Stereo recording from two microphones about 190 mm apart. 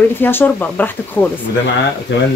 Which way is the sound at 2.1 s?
70° left (ahead or behind).